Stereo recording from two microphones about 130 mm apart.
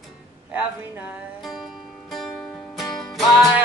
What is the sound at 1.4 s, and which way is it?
Music, centre (ahead or behind).